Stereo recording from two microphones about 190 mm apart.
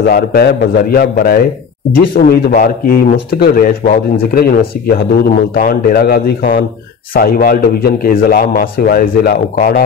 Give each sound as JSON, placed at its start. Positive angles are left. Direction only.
{"t": 0.0, "sound": "a man's voice", "side_deg": 50}
{"t": 2.4, "sound": "a man's voice", "side_deg": 50}